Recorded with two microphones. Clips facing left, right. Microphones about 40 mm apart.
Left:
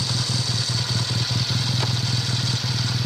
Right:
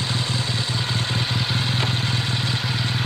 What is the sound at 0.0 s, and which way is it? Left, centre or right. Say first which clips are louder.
Vehicle: right 2 dB; right.